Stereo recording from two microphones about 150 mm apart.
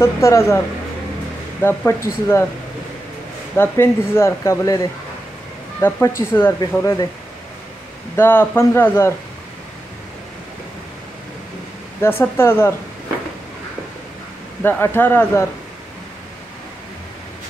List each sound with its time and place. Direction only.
0.0 s speech: 20° left (ahead or behind)
1.6 s speech: 15° left (ahead or behind)
3.5 s speech: 15° left (ahead or behind)
8.2 s speech: 15° left (ahead or behind)
12.0 s speech: 15° left (ahead or behind)
14.6 s speech: 15° left (ahead or behind)